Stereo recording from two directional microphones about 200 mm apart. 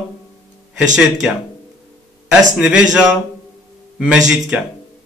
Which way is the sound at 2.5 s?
5° right (ahead or behind).